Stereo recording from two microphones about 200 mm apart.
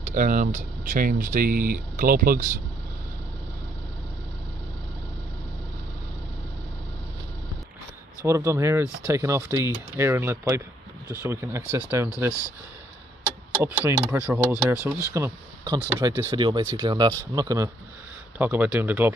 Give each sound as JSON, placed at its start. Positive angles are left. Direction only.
{"t": 0.0, "sound": "speech", "side_deg": -40}
{"t": 8.3, "sound": "speech", "side_deg": -10}
{"t": 13.7, "sound": "speech", "side_deg": -10}